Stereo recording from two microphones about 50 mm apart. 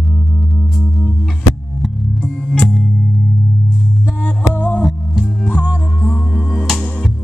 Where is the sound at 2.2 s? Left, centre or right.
Centre.